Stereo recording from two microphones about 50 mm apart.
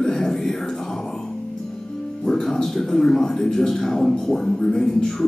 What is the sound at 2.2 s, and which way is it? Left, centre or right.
A man's voice, centre.